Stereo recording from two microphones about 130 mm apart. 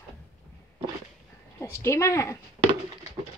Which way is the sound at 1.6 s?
20° left (ahead or behind).